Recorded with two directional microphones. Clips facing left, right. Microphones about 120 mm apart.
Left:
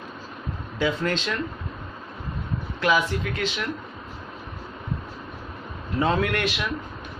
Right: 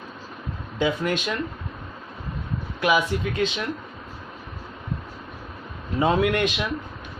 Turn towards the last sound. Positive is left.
turn(degrees=-20)  # may be behind; listen again after turning